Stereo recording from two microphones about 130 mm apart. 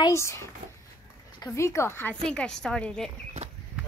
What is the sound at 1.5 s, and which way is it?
Speech, 20° left (ahead or behind).